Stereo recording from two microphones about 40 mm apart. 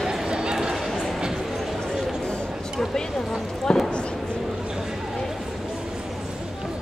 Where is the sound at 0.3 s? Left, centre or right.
Right.